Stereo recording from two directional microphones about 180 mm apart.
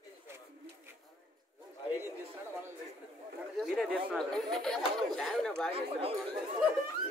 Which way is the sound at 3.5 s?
Centre (ahead or behind).